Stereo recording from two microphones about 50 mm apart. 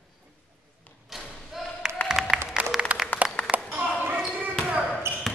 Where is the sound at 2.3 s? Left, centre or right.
Centre.